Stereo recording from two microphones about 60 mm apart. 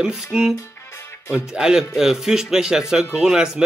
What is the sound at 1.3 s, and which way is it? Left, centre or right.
Speech, centre.